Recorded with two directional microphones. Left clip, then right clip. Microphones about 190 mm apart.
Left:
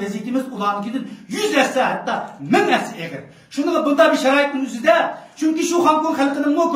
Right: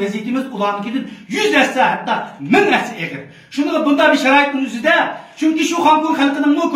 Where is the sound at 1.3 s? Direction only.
15° left (ahead or behind).